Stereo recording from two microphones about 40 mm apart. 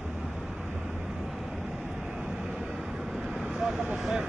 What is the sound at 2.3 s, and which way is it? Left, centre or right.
Vehicle, centre.